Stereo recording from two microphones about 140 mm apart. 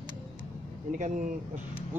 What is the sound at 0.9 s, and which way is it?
Speech, 65° right (ahead or behind).